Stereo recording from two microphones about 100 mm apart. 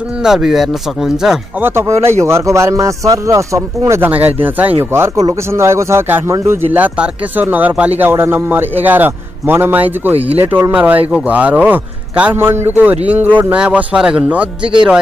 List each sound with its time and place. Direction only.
0.2 s speech: 5° right (ahead or behind)
1.6 s speech: 30° right (ahead or behind)
4.4 s a man's voice: 15° right (ahead or behind)